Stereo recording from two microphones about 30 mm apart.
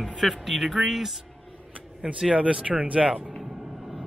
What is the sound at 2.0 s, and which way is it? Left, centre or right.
Speech, right.